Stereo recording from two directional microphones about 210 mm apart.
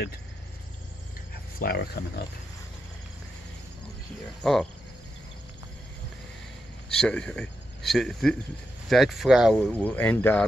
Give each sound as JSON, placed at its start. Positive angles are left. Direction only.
{"t": 1.6, "sound": "speech", "side_deg": 50}
{"t": 4.4, "sound": "speech", "side_deg": 0}
{"t": 7.0, "sound": "speech", "side_deg": 5}